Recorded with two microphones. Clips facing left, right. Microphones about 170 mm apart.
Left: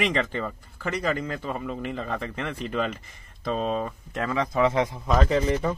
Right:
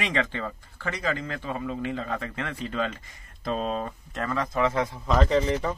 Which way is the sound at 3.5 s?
5° left (ahead or behind).